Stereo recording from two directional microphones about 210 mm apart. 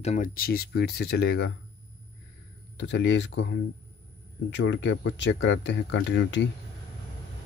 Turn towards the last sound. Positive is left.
turn(degrees=60)  # may be behind; listen again after turning